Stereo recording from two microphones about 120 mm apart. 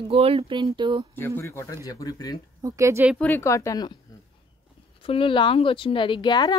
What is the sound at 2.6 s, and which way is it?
Speech, 25° right (ahead or behind).